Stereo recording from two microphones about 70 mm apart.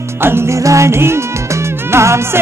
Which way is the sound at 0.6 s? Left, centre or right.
Right.